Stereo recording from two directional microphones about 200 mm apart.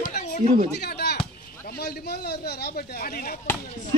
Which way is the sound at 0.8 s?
55° left (ahead or behind).